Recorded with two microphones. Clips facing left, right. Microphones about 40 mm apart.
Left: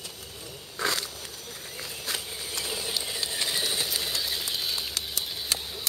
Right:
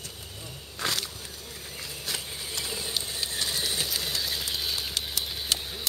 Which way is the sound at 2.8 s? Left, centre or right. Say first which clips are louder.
Left 1 dB; left.